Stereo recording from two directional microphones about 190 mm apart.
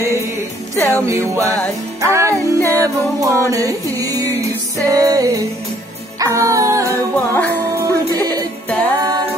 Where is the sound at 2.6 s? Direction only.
10° left (ahead or behind).